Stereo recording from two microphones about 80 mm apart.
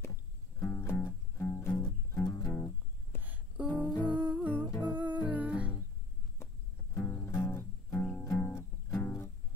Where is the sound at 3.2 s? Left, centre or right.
Centre.